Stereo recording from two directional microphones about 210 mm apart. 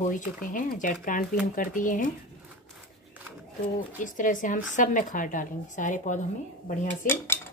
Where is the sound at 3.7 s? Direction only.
40° left (ahead or behind).